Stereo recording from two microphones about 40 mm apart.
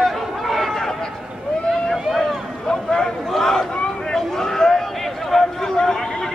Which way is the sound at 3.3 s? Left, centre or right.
Centre.